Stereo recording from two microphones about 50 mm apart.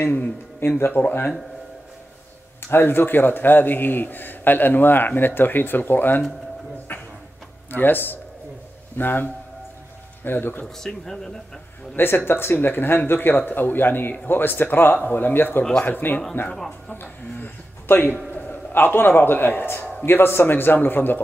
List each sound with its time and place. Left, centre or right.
0.6 s a man's voice: left
2.7 s a man's voice: left
6.9 s a sound: left
7.7 s a man's voice: left
10.8 s speech: centre
12.3 s a man's voice: left
16.5 s speech: centre
16.9 s a man's voice: left